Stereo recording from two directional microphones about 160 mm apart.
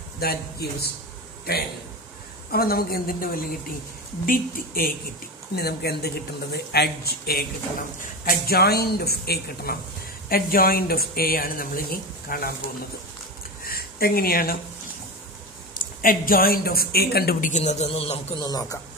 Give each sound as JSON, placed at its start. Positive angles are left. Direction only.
{"t": 0.2, "sound": "speech", "side_deg": 75}
{"t": 2.5, "sound": "speech", "side_deg": 70}
{"t": 5.6, "sound": "speech", "side_deg": 85}
{"t": 10.3, "sound": "speech", "side_deg": 65}
{"t": 13.7, "sound": "a sound", "side_deg": 70}
{"t": 15.7, "sound": "speech", "side_deg": 60}
{"t": 17.5, "sound": "a man's voice", "side_deg": 45}
{"t": 18.4, "sound": "speech", "side_deg": 25}